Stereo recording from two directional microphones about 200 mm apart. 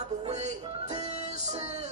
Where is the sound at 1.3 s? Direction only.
35° right (ahead or behind).